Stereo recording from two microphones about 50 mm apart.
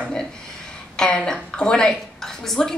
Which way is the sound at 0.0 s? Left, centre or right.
Centre.